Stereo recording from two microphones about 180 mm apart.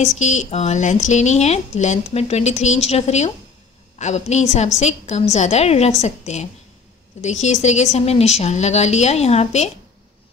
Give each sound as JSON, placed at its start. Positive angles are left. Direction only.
{"t": 0.2, "sound": "speech", "side_deg": 40}